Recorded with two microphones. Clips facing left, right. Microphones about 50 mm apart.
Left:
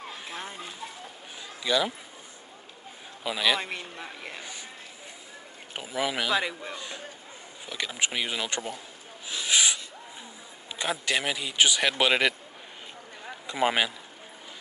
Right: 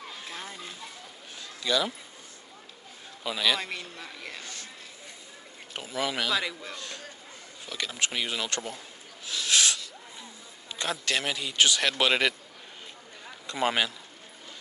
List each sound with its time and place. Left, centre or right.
0.1 s a sound: centre
1.6 s speech: centre
3.3 s a man's voice: centre
5.7 s a man's voice: centre
9.3 s snort: centre
10.8 s a man's voice: centre
13.5 s a man's voice: centre